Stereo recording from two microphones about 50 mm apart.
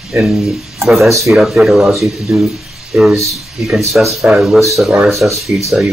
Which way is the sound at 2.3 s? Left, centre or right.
Centre.